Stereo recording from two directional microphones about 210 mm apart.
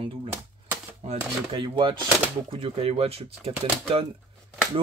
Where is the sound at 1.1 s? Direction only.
25° right (ahead or behind).